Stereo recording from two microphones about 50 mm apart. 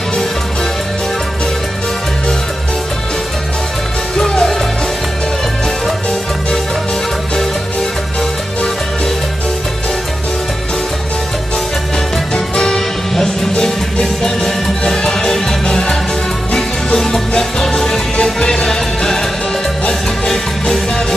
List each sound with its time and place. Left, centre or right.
4.2 s music: centre
12.4 s music: centre